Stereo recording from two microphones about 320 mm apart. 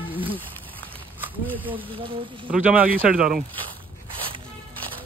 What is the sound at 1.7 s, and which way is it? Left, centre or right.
Speech, centre.